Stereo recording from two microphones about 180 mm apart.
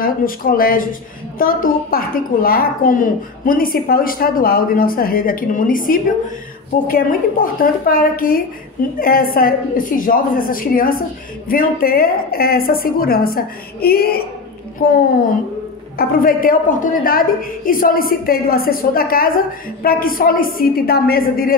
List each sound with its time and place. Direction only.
0.0 s a woman's voice: 50° left (ahead or behind)
16.0 s a woman's voice: 50° left (ahead or behind)